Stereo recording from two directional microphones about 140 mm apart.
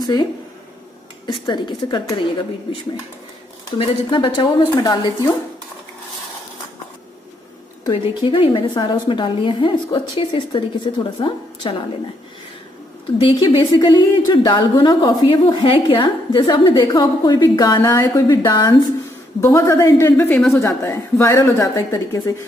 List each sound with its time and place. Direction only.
0.0 s a woman's voice: 30° left (ahead or behind)
7.8 s a woman's voice: 35° left (ahead or behind)
13.2 s a woman's voice: 30° left (ahead or behind)